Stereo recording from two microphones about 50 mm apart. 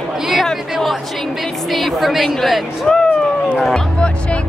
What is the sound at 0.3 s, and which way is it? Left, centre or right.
Speech, centre.